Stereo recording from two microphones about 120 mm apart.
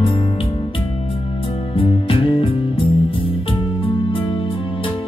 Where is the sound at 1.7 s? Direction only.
45° left (ahead or behind).